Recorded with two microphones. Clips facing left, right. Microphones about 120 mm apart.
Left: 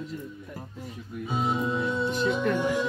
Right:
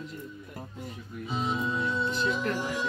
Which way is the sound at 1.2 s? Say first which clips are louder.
Left 3 dB; 10° left (ahead or behind).